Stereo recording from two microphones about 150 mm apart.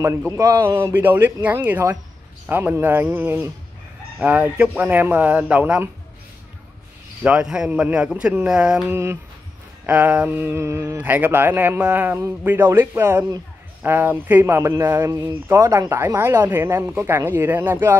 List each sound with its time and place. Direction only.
0.0 s speech: 20° right (ahead or behind)
7.2 s speech: 5° right (ahead or behind)
8.9 s speech: 15° right (ahead or behind)